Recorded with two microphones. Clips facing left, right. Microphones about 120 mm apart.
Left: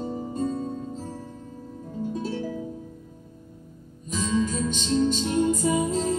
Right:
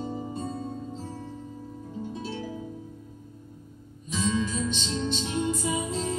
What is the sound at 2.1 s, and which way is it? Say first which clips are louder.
Music: left 7 dB; 45° left (ahead or behind).